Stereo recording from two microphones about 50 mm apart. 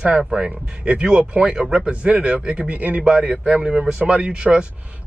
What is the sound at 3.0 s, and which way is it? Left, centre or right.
Speech, centre.